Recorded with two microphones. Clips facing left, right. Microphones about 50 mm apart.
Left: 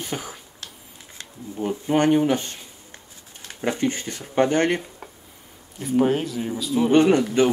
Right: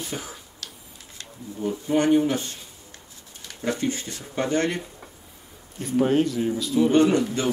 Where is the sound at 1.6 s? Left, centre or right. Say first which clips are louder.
Left 2 dB; left.